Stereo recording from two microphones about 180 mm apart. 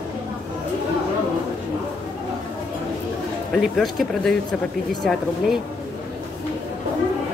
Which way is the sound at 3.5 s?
Centre (ahead or behind).